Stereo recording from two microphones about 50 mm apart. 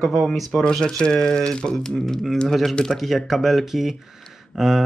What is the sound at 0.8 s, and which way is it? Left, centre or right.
Speech, centre.